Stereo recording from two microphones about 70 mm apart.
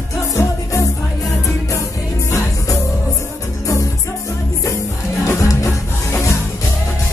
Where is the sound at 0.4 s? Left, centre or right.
Left.